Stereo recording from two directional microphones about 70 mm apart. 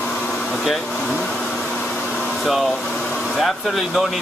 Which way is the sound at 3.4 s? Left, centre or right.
Centre.